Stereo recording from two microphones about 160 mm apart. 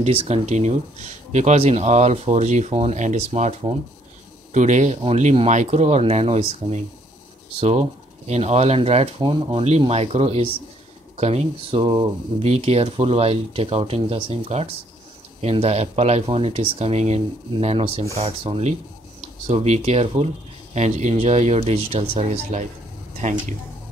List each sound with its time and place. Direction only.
0.0 s speech: 40° right (ahead or behind)
8.3 s speech: 45° right (ahead or behind)